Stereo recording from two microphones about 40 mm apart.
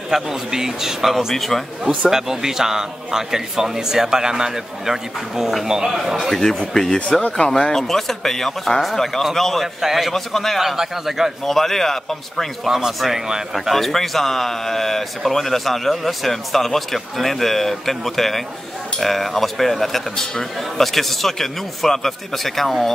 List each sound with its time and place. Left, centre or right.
0.1 s a man's voice: centre
1.3 s a man's voice: centre
2.0 s a man's voice: centre
6.7 s a man's voice: centre
10.1 s a man's voice: centre
10.6 s a man's voice: centre
11.4 s a man's voice: centre
12.6 s a man's voice: centre
13.7 s a man's voice: centre